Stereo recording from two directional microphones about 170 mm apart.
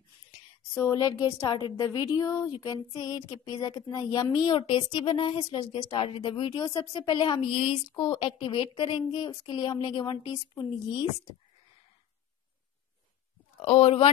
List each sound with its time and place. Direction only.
0.7 s a woman's voice: 20° left (ahead or behind)
13.6 s speech: 30° left (ahead or behind)